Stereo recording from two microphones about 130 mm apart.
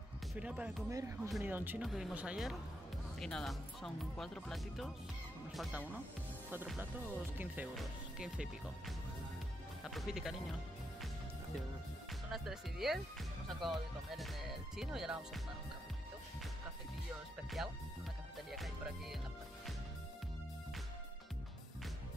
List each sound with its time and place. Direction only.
0.3 s speech: 10° right (ahead or behind)
0.8 s speech: 20° right (ahead or behind)
1.8 s speech: centre (ahead or behind)
6.8 s speech: 15° right (ahead or behind)
12.3 s speech: centre (ahead or behind)
17.6 s speech: centre (ahead or behind)